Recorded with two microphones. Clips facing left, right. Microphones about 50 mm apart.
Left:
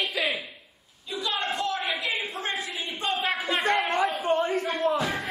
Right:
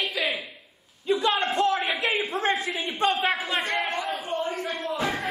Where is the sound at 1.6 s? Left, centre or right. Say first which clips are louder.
Right 5 dB; right.